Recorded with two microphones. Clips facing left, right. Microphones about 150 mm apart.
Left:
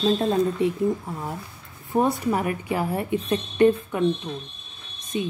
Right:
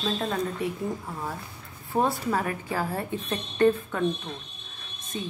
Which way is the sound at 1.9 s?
15° left (ahead or behind).